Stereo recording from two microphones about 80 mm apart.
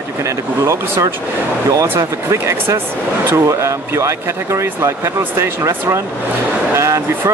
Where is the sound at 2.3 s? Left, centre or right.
Right.